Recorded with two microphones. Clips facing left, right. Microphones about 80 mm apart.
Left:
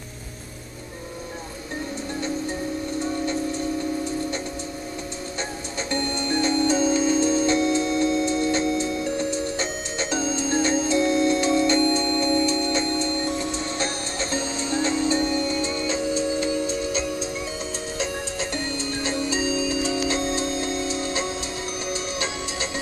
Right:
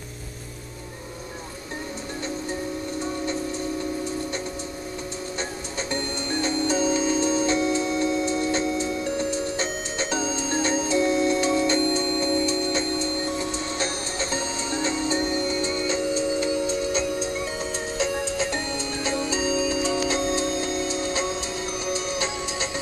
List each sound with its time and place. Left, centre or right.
5.9 s music: centre
7.5 s music: centre
15.0 s music: centre
19.5 s music: centre
20.4 s music: right